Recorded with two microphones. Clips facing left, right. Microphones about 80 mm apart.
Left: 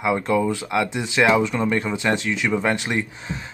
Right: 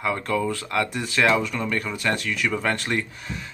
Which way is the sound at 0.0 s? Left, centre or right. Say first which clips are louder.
Left 4 dB; centre.